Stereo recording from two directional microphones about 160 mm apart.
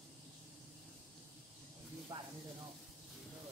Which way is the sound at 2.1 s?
25° right (ahead or behind).